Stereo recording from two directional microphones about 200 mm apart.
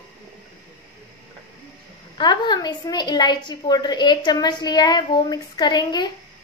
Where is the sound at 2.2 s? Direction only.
20° left (ahead or behind).